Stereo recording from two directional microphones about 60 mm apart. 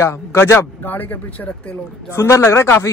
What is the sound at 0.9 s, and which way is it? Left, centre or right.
Speech, left.